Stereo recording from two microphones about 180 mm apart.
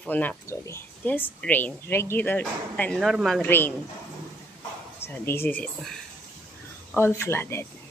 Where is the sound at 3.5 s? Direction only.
10° left (ahead or behind).